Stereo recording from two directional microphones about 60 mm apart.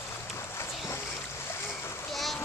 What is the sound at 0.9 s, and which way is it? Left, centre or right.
Splash, left.